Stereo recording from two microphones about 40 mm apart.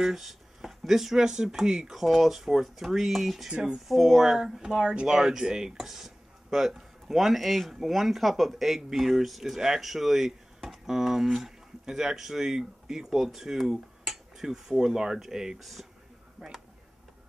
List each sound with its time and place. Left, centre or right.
0.0 s speech: centre
4.6 s speech: centre
15.6 s speech: centre